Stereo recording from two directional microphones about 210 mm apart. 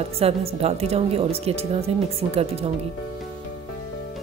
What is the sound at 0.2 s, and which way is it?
A woman's voice, 30° right (ahead or behind).